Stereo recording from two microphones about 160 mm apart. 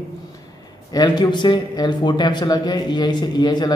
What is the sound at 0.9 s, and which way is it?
A man's voice, 25° left (ahead or behind).